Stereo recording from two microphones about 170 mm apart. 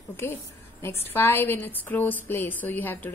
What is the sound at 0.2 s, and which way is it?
Speech, 15° left (ahead or behind).